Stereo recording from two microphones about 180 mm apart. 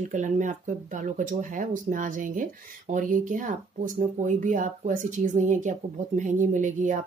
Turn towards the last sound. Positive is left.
turn(degrees=-45)  # may be behind; listen again after turning